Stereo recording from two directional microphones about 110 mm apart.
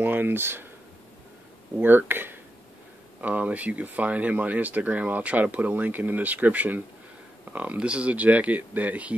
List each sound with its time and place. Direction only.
0.0 s speech: 20° right (ahead or behind)
1.8 s speech: 20° right (ahead or behind)